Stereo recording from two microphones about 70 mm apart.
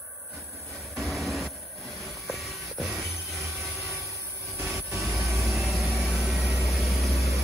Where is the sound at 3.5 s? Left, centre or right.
Centre.